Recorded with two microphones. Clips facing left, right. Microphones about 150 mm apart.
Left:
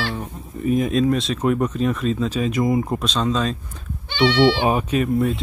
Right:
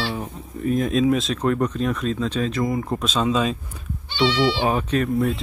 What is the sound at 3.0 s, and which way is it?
Speech, 5° right (ahead or behind).